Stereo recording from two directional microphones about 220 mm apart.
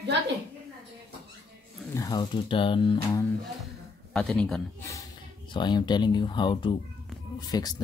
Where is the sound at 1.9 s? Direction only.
15° left (ahead or behind).